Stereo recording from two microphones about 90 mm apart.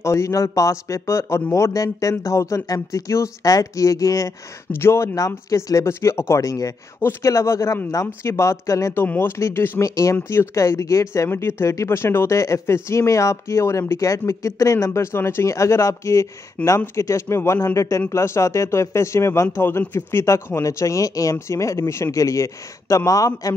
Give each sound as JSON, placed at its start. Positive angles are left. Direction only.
{"t": 0.0, "sound": "speech", "side_deg": 30}
{"t": 9.0, "sound": "speech", "side_deg": 20}